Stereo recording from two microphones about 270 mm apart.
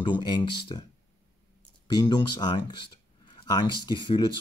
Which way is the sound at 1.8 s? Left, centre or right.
Centre.